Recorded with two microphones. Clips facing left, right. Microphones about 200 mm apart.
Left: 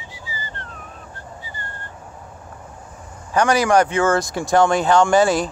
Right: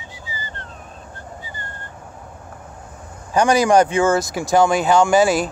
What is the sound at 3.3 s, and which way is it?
Speech, 15° right (ahead or behind).